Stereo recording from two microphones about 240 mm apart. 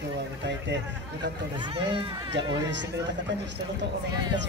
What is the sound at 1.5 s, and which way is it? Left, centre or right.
Speech, right.